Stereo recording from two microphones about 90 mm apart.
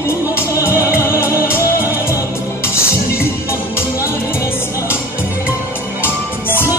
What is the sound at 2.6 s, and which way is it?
Music, 30° left (ahead or behind).